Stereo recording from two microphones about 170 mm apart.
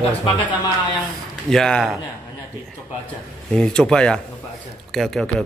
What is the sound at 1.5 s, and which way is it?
Speech, 5° left (ahead or behind).